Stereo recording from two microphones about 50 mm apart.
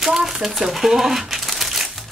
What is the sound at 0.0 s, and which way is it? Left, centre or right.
Speech, centre.